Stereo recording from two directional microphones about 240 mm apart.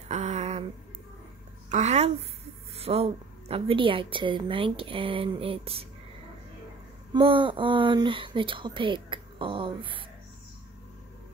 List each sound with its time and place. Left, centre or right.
0.1 s a sound: right
1.7 s a woman's voice: right
7.2 s a woman's voice: right